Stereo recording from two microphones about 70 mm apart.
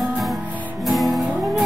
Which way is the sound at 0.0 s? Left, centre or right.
Centre.